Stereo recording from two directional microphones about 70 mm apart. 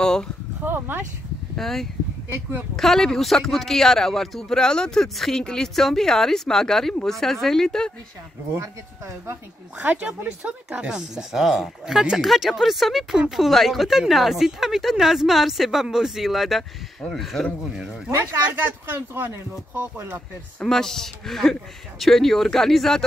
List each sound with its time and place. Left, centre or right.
0.0 s a sound: centre
0.7 s speech: right
1.6 s a man's voice: centre
8.5 s speech: right
9.8 s a man's voice: right; by 17.4 s centre
17.6 s speech: centre
18.1 s speech: right
19.1 s speech: right
20.6 s a man's voice: centre